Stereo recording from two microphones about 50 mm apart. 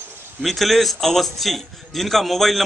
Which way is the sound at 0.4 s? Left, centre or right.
Centre.